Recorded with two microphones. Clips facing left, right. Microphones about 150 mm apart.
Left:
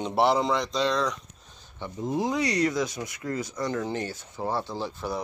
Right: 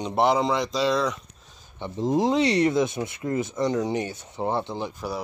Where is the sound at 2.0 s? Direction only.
35° right (ahead or behind).